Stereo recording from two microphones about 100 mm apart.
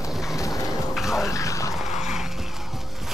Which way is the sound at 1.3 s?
30° left (ahead or behind).